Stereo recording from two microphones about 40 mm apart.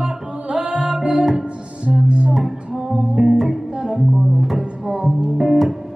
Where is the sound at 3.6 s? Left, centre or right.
Right.